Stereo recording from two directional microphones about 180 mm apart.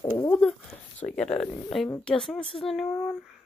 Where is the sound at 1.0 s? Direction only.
30° left (ahead or behind).